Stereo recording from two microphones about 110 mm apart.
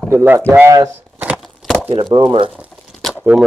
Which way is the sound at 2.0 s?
40° right (ahead or behind).